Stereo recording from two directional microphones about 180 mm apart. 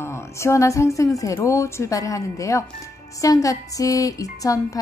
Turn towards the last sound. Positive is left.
turn(degrees=20)  # may be behind; listen again after turning